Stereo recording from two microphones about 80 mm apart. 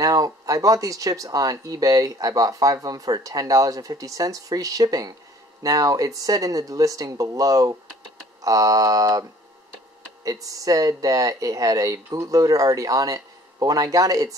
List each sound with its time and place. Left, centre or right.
0.0 s speech: right
10.2 s speech: right